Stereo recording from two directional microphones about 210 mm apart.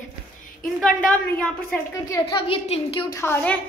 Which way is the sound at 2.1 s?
25° left (ahead or behind).